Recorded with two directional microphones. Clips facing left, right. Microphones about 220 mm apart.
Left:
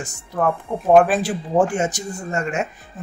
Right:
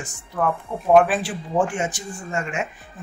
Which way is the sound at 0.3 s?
40° left (ahead or behind).